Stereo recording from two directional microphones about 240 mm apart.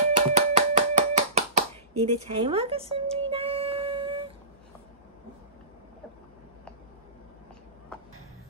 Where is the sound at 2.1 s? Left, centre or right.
Right.